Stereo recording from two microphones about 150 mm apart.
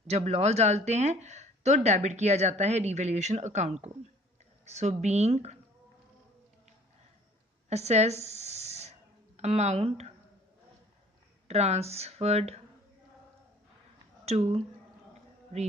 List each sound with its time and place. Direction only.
0.0 s speech: 45° right (ahead or behind)
7.7 s a sound: 45° right (ahead or behind)
9.4 s speech: 45° right (ahead or behind)
11.4 s speech: 45° right (ahead or behind)
14.2 s speech: 45° right (ahead or behind)